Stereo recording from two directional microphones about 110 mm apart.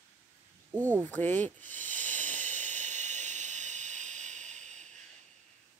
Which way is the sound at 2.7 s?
90° right.